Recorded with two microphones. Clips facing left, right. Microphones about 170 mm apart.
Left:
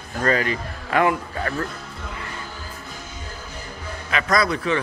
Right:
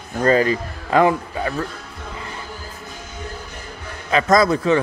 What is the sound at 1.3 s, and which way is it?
Speech, 15° right (ahead or behind).